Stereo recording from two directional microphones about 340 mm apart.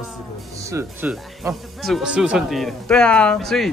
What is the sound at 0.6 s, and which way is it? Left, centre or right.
Speech, centre.